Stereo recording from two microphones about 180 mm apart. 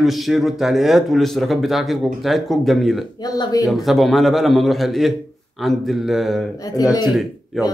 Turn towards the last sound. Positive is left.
turn(degrees=0)  # may be behind; listen again after turning